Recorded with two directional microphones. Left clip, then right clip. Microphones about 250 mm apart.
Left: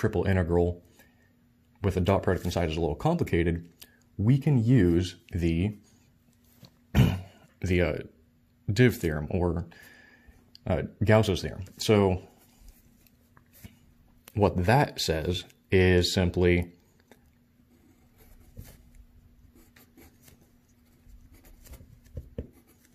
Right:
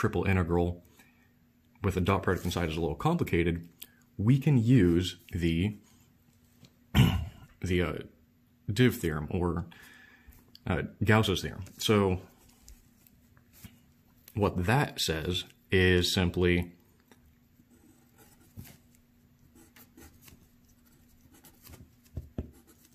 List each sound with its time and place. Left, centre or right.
0.0 s speech: centre
6.6 s cough: centre
7.6 s speech: centre
14.3 s speech: centre